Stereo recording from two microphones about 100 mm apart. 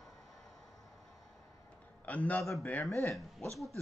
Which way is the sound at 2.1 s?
15° left (ahead or behind).